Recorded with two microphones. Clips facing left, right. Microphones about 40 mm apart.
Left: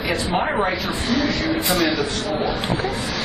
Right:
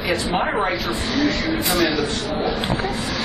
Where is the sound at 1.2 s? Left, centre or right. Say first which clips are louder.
Right 1 dB; right.